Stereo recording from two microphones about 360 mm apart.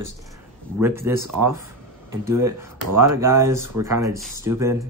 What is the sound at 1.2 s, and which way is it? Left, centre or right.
Speech, right.